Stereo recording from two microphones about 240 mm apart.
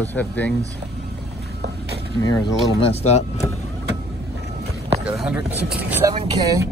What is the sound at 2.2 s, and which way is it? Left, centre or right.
Speech, centre.